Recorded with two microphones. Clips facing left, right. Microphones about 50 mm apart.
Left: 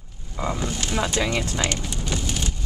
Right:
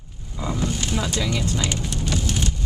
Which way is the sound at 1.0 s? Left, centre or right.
Left.